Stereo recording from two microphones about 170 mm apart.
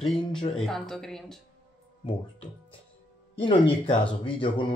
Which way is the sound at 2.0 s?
30° left (ahead or behind).